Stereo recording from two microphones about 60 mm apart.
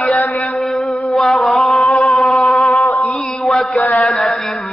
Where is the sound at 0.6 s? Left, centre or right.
Centre.